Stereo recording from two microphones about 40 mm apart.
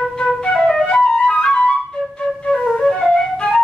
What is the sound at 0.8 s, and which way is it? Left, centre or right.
Flute, left.